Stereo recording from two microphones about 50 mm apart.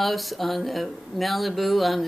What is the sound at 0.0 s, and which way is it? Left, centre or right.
Speech, centre.